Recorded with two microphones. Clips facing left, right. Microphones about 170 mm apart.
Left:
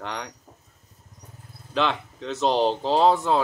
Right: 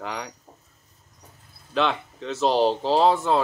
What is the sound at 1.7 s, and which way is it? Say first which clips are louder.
Speech: right 1 dB; centre (ahead or behind).